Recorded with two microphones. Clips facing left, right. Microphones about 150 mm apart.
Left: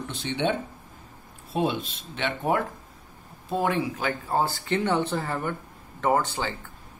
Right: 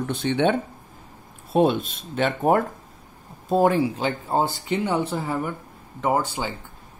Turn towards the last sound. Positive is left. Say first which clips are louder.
# right 1 dB
turn(degrees=-10)  # may be behind; listen again after turning